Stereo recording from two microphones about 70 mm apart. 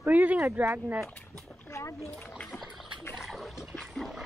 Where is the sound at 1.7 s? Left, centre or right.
Left.